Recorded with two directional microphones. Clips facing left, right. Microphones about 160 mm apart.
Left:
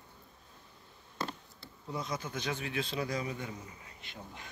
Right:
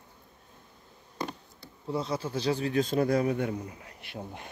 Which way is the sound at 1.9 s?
30° right (ahead or behind).